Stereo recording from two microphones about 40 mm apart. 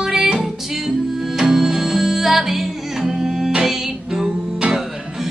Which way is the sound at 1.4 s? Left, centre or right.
Centre.